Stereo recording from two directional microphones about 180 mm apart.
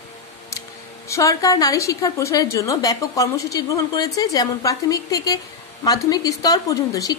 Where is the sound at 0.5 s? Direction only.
15° left (ahead or behind).